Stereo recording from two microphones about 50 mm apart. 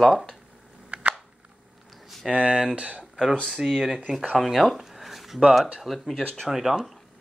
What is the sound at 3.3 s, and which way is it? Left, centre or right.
Speech, centre.